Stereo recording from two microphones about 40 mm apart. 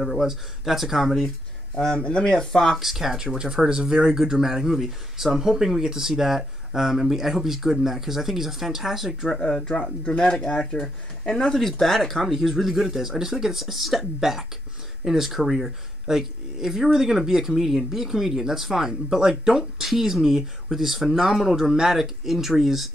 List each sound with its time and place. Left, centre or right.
0.0 s speech: centre
1.8 s speech: left
2.3 s speech: centre
2.8 s speech: centre
9.3 s speech: centre
10.0 s speech: left; by 22.8 s centre